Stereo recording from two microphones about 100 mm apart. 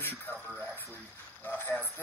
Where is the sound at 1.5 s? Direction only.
20° left (ahead or behind).